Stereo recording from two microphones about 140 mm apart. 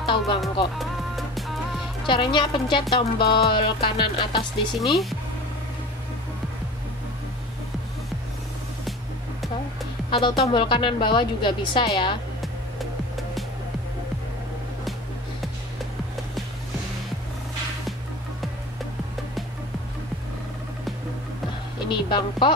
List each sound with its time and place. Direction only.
0.0 s music: 35° left (ahead or behind)
0.7 s music: centre (ahead or behind)
2.0 s music: 35° left (ahead or behind)
4.7 s speech: centre (ahead or behind)
10.1 s music: 35° left (ahead or behind)
21.8 s speech: 35° left (ahead or behind)